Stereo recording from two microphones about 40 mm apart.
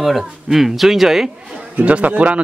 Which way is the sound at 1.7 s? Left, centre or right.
Right.